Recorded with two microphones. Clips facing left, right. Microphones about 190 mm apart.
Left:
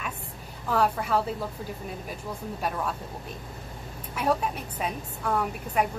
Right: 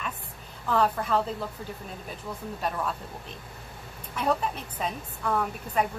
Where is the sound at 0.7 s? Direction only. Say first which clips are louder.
Even; 5° left (ahead or behind).